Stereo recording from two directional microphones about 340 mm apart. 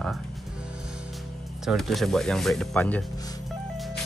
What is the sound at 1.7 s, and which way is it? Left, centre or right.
Speech, centre.